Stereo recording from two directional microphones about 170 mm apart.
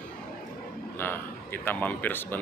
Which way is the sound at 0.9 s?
10° left (ahead or behind).